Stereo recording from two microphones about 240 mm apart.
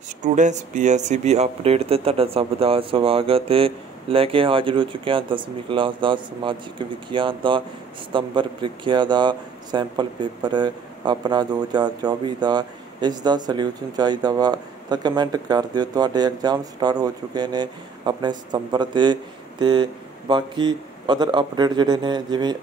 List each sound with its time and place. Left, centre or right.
0.2 s a man's voice: right